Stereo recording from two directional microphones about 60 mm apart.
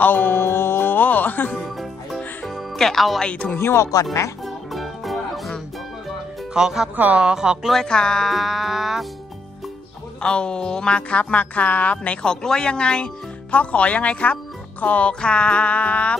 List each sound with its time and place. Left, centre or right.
0.0 s music: left
1.6 s music: centre
3.5 s speech: left
3.9 s speech: left
4.5 s music: centre
6.5 s speech: centre
7.6 s music: centre
10.2 s speech: centre